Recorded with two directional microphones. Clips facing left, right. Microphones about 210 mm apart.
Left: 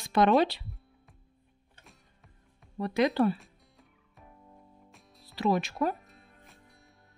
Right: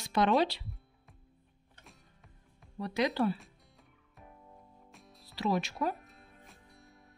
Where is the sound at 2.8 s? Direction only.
55° left (ahead or behind).